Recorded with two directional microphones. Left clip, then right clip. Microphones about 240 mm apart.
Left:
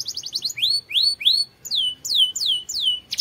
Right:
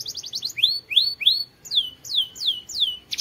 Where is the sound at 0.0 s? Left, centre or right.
Centre.